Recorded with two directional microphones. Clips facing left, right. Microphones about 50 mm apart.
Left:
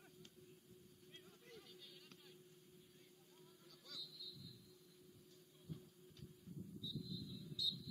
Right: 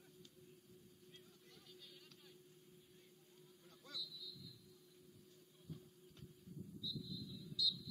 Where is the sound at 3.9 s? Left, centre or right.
Right.